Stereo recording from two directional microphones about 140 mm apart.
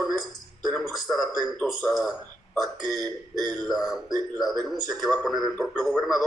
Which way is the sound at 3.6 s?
Centre (ahead or behind).